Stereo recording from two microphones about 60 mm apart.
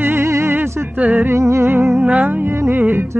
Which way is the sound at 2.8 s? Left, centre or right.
Right.